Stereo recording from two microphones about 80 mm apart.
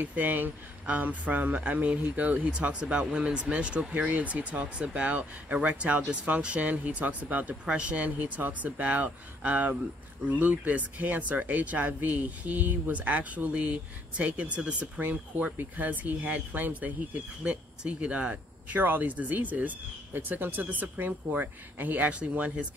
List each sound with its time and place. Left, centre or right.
0.0 s speech: right